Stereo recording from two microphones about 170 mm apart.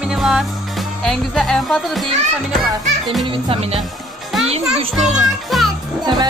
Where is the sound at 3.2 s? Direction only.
30° right (ahead or behind).